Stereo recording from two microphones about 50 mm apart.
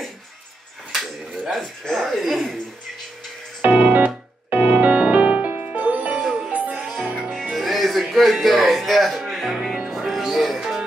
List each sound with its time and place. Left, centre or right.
0.9 s a sound: centre
1.6 s speech: centre
3.6 s music: right
6.1 s music: centre
6.5 s music: right
7.5 s music: centre